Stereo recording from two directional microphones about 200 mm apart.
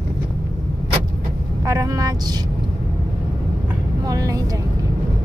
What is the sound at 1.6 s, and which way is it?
Speech, 15° right (ahead or behind).